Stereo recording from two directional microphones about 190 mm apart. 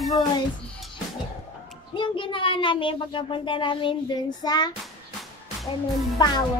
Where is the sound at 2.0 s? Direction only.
25° left (ahead or behind).